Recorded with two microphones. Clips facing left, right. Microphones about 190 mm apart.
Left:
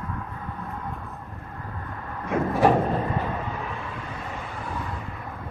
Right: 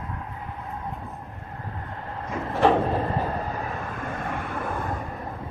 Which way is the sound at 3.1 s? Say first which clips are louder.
Right 1 dB; 40° right (ahead or behind).